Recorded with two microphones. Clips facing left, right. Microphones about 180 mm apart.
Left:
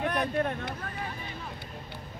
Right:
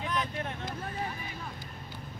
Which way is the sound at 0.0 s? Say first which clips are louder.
Left 6 dB; 60° left (ahead or behind).